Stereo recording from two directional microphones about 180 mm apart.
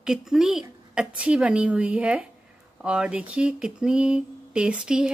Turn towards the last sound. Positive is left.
turn(degrees=-5)  # may be behind; listen again after turning